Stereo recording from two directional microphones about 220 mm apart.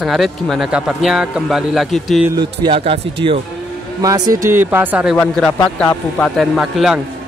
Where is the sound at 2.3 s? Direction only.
20° right (ahead or behind).